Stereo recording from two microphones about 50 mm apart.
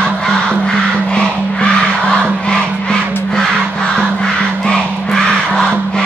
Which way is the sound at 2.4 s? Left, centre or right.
Centre.